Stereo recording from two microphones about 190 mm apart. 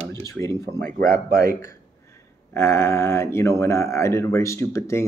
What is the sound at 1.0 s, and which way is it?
Speech, 50° right (ahead or behind).